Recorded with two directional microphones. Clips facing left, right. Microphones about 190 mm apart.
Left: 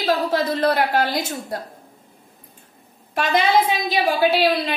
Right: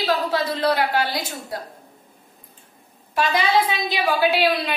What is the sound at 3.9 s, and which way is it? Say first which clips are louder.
Speech: left 2 dB; 40° left (ahead or behind).